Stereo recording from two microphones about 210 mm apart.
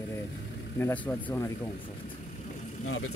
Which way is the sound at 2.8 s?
80° left.